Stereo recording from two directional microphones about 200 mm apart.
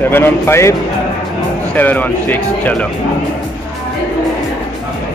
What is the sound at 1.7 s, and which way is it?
Speech, 10° left (ahead or behind).